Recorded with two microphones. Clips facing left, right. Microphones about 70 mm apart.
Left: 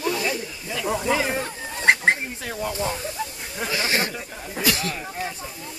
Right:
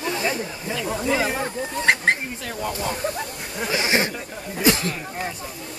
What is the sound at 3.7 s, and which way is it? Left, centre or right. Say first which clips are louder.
Speech: right 3 dB; right.